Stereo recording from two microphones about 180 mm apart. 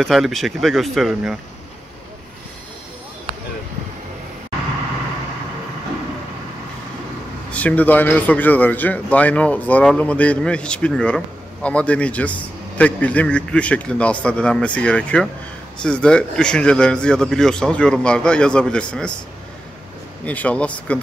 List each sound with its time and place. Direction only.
0.0 s a man's voice: centre (ahead or behind)
7.5 s a man's voice: 10° left (ahead or behind)
20.2 s speech: 10° left (ahead or behind)